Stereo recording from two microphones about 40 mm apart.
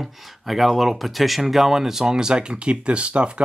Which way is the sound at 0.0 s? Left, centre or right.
Centre.